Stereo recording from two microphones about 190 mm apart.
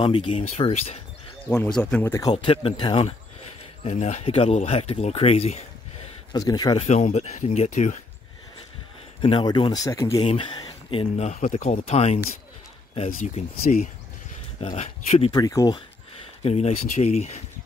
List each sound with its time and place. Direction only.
0.0 s speech: 30° left (ahead or behind)
1.5 s speech: 10° left (ahead or behind)
2.3 s speech: 30° left (ahead or behind)
6.3 s speech: 20° left (ahead or behind); by 8.0 s 40° left (ahead or behind)
9.2 s speech: 25° left (ahead or behind)
13.6 s speech: 45° left (ahead or behind)
15.3 s speech: 20° left (ahead or behind)
16.4 s speech: 35° left (ahead or behind)